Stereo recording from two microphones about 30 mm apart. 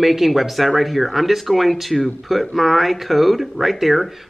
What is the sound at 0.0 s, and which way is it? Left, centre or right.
Speech, centre.